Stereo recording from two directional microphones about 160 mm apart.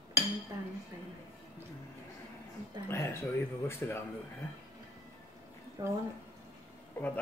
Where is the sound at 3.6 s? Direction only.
15° left (ahead or behind).